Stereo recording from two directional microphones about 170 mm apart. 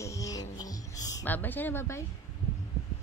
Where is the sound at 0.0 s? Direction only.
20° left (ahead or behind).